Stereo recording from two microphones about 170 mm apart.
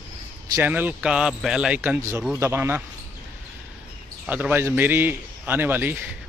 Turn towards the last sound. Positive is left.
turn(degrees=-10)  # may be behind; listen again after turning